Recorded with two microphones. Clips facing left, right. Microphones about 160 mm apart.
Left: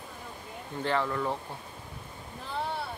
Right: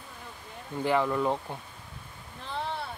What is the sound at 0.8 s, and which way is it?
Speech, 15° right (ahead or behind).